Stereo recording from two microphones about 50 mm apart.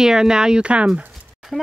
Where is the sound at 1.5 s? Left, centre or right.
Centre.